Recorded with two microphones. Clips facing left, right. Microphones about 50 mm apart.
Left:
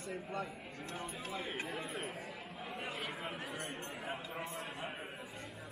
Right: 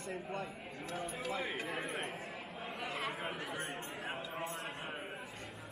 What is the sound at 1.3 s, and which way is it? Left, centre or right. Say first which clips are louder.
Speech: right 3 dB; right.